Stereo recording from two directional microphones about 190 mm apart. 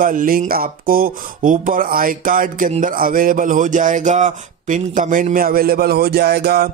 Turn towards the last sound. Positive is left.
turn(degrees=-55)  # may be behind; listen again after turning